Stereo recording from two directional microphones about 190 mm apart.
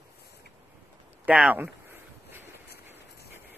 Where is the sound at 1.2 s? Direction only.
5° right (ahead or behind).